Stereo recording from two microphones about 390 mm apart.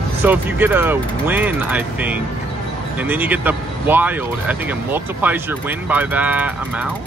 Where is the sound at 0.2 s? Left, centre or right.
Centre.